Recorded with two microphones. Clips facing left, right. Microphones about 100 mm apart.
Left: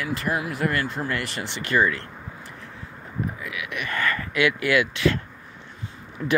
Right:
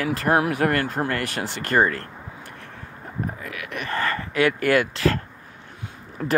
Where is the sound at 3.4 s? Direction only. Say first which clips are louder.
Even; 45° right (ahead or behind).